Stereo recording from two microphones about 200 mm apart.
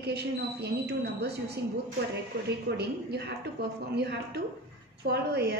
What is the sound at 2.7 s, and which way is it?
A woman's voice, 55° right (ahead or behind).